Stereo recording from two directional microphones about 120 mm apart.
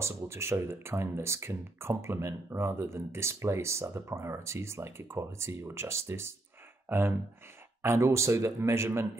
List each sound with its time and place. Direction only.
0.0 s speech: 20° right (ahead or behind)